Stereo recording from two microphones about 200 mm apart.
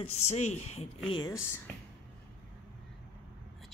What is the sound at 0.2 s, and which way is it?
Speech, 35° left (ahead or behind).